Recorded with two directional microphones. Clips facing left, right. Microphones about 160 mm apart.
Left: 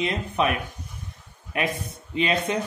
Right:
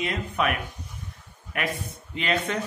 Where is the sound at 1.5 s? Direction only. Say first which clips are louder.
Left 3 dB; 20° left (ahead or behind).